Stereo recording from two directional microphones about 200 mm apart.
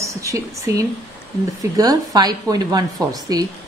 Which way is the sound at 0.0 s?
15° right (ahead or behind).